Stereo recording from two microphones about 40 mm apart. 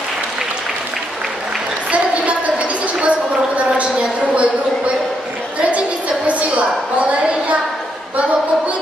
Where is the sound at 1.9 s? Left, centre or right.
Right.